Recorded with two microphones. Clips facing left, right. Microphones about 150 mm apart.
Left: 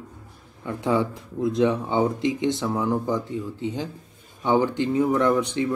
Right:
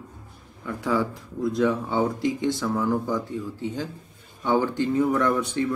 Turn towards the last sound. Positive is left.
turn(degrees=15)  # may be behind; listen again after turning